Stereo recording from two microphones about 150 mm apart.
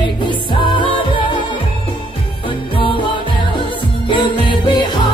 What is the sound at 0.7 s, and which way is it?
Music, 35° left (ahead or behind).